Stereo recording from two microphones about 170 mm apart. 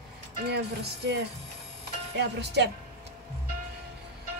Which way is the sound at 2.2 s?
80° right.